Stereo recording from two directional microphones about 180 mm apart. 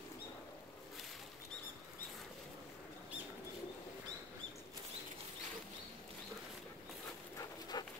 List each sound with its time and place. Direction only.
7.7 s dog: 20° left (ahead or behind)